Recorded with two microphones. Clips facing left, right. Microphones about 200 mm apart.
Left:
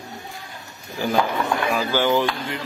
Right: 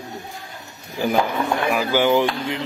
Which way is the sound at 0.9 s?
15° right (ahead or behind).